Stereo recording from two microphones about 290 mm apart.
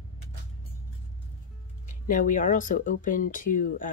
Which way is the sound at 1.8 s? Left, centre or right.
Left.